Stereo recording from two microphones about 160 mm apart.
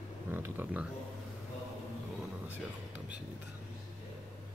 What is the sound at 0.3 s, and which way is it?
Speech, 15° right (ahead or behind).